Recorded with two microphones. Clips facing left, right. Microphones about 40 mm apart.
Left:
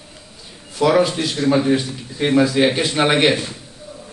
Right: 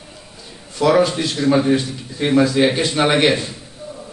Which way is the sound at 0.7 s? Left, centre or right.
Centre.